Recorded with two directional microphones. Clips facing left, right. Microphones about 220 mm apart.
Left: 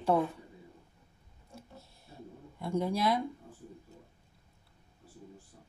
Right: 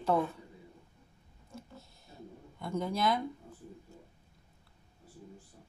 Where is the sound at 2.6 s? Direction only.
30° left (ahead or behind).